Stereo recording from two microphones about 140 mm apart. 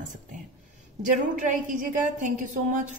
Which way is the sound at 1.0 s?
70° right (ahead or behind).